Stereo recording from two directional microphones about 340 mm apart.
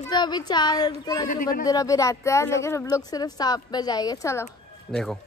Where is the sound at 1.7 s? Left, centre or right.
Centre.